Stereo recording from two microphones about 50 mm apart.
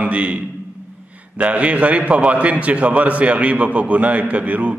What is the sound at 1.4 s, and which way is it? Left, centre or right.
A man's voice, right.